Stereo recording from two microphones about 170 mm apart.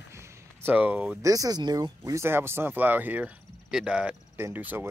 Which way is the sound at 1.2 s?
20° right (ahead or behind).